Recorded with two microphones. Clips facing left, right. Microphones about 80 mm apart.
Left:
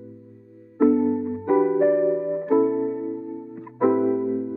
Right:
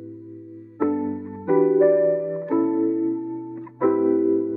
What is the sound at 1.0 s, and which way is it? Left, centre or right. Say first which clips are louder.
Music: left 5 dB; centre.